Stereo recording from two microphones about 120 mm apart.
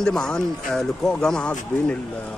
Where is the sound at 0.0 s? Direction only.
5° left (ahead or behind).